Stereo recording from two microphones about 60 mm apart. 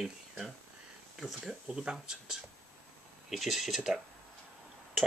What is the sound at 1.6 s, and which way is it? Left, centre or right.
Speech, centre.